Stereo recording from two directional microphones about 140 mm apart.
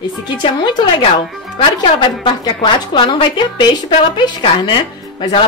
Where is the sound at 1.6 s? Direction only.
35° left (ahead or behind).